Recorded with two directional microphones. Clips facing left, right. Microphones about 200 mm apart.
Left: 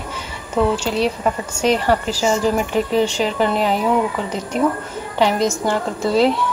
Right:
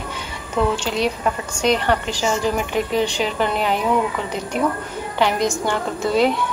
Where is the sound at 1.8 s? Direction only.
5° left (ahead or behind).